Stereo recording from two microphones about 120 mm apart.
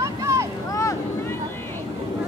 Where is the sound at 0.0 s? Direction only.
25° right (ahead or behind).